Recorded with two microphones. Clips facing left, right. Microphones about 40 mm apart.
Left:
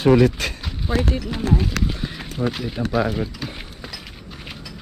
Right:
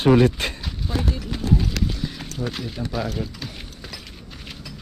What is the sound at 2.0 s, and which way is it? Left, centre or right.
Run, left.